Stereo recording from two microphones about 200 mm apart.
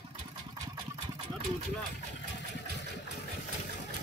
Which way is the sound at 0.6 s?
20° right (ahead or behind).